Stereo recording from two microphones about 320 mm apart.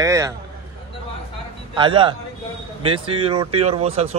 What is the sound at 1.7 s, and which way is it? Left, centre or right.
A man's voice, centre.